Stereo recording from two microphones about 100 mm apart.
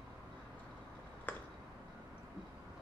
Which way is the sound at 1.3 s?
15° left (ahead or behind).